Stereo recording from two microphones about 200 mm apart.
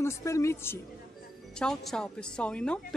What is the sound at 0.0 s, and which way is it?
A woman's voice, 15° left (ahead or behind).